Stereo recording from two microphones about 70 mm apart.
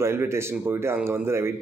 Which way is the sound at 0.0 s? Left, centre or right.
Right.